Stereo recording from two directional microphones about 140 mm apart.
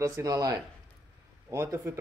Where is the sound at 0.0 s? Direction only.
25° right (ahead or behind).